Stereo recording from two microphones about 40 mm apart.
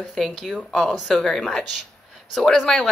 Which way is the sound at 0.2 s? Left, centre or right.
Centre.